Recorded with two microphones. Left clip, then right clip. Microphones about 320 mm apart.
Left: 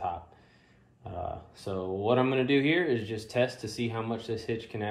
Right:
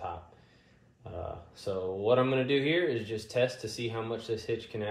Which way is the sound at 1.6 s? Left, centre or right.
Left.